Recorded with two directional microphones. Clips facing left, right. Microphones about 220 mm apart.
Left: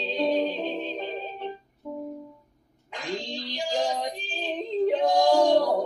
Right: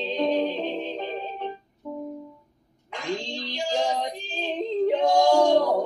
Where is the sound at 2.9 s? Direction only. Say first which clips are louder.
Right 2 dB; 15° left (ahead or behind).